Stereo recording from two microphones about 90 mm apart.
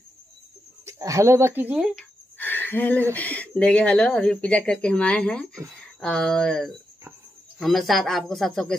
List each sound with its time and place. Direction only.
0.8 s speech: 35° right (ahead or behind)
1.8 s speech: 10° right (ahead or behind)
2.3 s speech: 20° left (ahead or behind); by 8.7 s 5° left (ahead or behind)